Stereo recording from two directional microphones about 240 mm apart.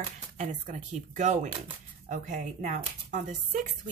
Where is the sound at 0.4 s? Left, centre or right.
Right.